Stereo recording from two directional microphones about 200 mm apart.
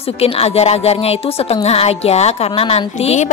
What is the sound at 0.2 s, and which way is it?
A woman's voice, 30° left (ahead or behind).